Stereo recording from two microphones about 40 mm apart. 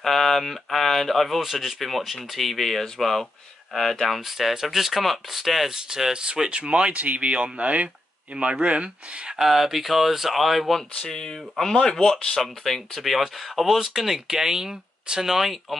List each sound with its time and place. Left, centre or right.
0.0 s speech: centre; by 9.3 s right
9.4 s speech: centre
11.0 s speech: centre
12.4 s speech: centre